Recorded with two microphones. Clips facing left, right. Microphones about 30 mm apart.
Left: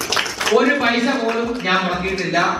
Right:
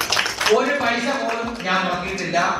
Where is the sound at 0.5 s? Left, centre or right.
Centre.